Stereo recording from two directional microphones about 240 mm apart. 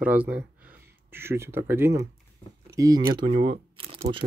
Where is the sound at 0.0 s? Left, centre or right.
Centre.